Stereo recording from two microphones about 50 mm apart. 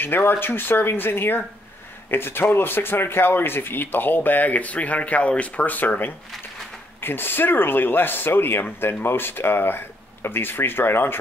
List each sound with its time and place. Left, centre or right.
0.0 s speech: left